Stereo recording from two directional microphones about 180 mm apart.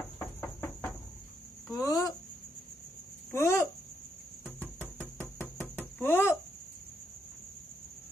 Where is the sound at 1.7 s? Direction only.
20° left (ahead or behind).